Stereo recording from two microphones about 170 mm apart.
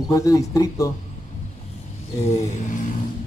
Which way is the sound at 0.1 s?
20° left (ahead or behind).